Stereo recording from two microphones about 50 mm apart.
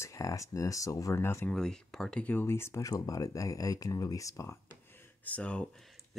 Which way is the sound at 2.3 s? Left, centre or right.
Left.